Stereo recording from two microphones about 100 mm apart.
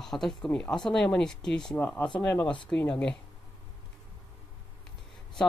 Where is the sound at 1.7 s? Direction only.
20° left (ahead or behind).